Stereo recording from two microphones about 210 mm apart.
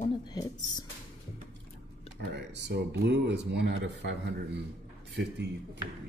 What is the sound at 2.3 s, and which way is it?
Speech, 55° right (ahead or behind).